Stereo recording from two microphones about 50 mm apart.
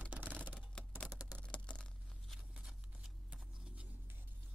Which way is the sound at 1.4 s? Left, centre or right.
Left.